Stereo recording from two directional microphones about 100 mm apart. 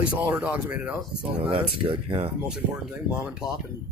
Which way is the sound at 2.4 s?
10° right (ahead or behind).